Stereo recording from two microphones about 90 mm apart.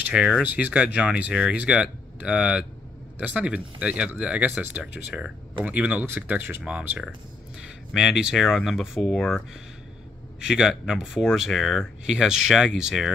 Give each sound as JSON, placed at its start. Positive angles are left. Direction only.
{"t": 0.1, "sound": "speech", "side_deg": -5}
{"t": 7.9, "sound": "speech", "side_deg": -5}
{"t": 10.4, "sound": "speech", "side_deg": -5}